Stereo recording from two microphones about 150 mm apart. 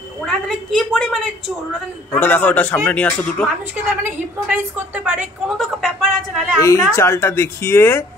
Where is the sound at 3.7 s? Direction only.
10° right (ahead or behind).